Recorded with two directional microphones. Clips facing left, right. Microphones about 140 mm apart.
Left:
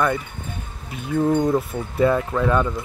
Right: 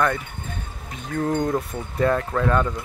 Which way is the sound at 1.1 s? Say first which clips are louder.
Left 4 dB; 10° left (ahead or behind).